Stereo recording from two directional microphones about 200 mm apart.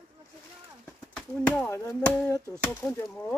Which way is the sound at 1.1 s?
5° left (ahead or behind).